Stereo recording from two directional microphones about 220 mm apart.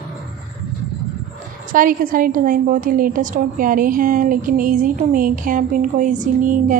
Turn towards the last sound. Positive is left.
turn(degrees=-35)  # may be behind; listen again after turning